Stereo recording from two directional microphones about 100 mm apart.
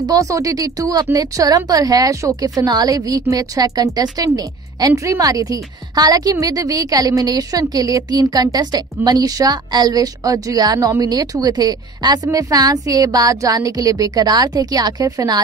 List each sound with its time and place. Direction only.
0.0 s a woman's voice: 35° right (ahead or behind)